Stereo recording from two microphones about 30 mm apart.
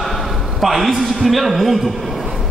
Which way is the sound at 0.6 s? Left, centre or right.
Centre.